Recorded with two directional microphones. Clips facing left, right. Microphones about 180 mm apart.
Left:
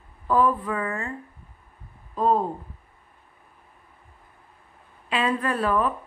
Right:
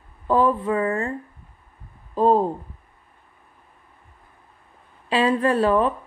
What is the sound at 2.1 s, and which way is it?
Speech, 30° right (ahead or behind).